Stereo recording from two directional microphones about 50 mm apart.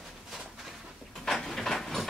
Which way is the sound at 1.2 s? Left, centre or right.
Centre.